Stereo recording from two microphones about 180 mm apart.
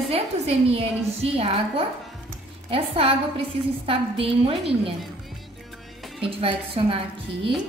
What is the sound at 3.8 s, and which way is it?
A woman's voice, 30° right (ahead or behind).